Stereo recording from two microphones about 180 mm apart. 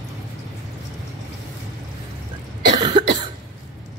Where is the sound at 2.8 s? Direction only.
25° right (ahead or behind).